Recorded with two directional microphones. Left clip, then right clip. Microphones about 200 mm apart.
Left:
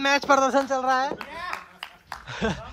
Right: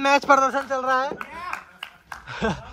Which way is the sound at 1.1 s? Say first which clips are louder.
Right 1 dB; 50° left (ahead or behind).